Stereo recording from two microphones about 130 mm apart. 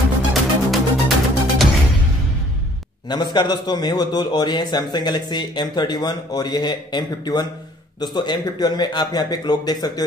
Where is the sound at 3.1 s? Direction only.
35° left (ahead or behind).